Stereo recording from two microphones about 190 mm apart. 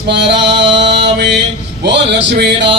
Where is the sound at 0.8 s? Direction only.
65° right (ahead or behind).